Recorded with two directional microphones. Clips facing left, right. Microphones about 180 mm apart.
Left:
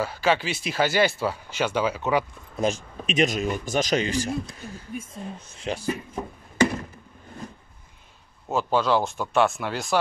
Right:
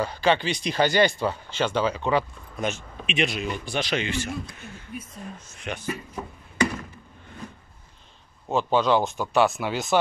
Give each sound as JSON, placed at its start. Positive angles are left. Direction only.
{"t": 0.0, "sound": "speech", "side_deg": 5}
{"t": 2.6, "sound": "speech", "side_deg": 40}
{"t": 8.5, "sound": "speech", "side_deg": 0}